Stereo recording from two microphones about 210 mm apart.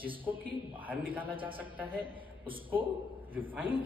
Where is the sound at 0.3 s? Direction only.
10° right (ahead or behind).